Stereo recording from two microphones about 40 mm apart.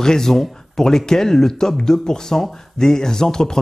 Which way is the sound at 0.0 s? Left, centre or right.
Centre.